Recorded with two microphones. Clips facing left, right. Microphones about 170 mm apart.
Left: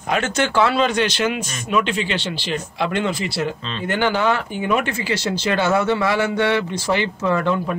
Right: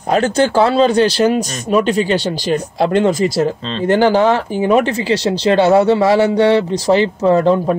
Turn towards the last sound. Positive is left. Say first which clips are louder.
# right 8 dB
turn(degrees=-35)  # may be behind; listen again after turning